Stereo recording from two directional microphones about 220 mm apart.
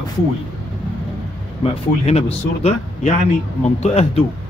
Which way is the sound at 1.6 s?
30° left (ahead or behind).